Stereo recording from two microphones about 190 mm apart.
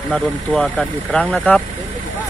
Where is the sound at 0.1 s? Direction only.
5° left (ahead or behind).